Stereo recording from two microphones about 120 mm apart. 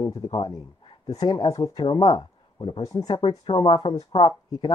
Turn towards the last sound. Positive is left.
turn(degrees=45)  # may be behind; listen again after turning